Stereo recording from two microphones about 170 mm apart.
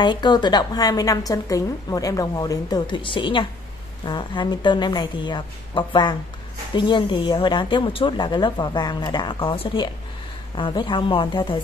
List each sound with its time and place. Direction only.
0.0 s a woman's voice: 25° left (ahead or behind)